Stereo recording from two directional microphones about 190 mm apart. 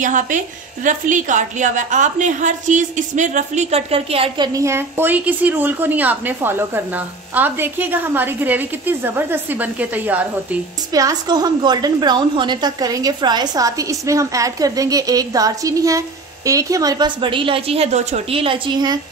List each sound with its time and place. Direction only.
0.0 s a woman's voice: 40° right (ahead or behind)
4.6 s a woman's voice: 15° right (ahead or behind)
10.9 s a woman's voice: 20° right (ahead or behind)